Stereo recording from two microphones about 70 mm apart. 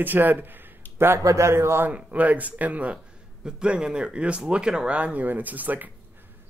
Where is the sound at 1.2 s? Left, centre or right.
Right.